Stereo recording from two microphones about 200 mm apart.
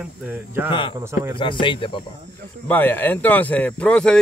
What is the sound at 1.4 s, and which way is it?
Speech, 25° left (ahead or behind).